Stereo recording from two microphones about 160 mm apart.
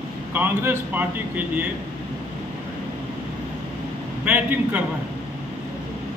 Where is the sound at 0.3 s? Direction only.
10° right (ahead or behind).